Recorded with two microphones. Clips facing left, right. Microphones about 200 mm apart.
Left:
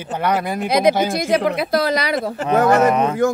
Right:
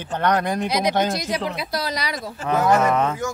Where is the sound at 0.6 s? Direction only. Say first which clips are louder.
Left 9 dB; 55° left (ahead or behind).